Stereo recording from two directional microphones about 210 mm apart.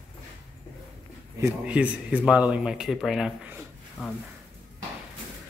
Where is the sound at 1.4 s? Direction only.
5° right (ahead or behind).